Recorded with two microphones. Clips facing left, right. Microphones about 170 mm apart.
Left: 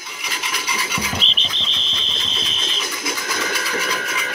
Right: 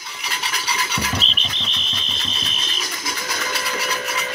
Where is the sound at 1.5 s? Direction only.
60° right (ahead or behind).